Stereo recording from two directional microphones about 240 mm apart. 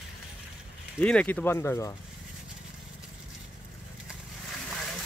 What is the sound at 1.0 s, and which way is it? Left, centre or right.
Speech, centre.